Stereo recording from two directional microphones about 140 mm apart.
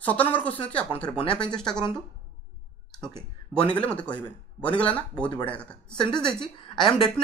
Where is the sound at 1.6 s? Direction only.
5° left (ahead or behind).